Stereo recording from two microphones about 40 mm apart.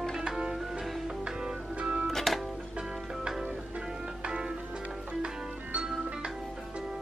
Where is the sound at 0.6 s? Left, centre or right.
Centre.